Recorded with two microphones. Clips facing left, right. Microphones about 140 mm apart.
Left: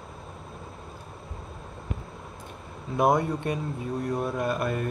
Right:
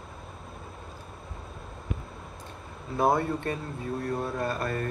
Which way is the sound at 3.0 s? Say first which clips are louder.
Left 2 dB; 15° left (ahead or behind).